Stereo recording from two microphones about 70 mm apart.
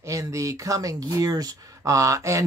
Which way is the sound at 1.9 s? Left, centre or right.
Right.